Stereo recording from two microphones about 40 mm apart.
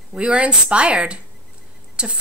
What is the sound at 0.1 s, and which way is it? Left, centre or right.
A woman's voice, right.